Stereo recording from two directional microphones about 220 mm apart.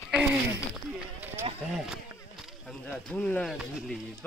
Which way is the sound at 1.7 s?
Centre (ahead or behind).